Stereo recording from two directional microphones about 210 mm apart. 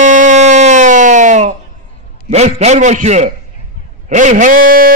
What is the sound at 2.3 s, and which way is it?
A man's voice, 30° right (ahead or behind).